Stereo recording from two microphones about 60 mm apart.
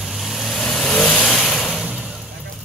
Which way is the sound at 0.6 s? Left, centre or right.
Centre.